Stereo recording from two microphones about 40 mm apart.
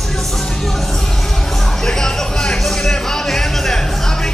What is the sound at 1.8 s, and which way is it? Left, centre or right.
Music, centre.